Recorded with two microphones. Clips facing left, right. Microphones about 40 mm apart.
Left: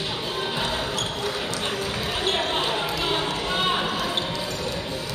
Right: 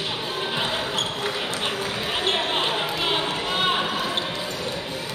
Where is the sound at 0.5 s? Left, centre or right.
Right.